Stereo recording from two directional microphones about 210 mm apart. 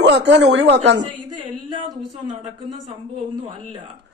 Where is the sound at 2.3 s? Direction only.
30° right (ahead or behind).